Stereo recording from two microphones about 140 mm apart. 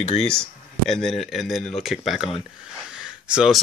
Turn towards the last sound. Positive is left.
turn(degrees=-5)  # may be behind; listen again after turning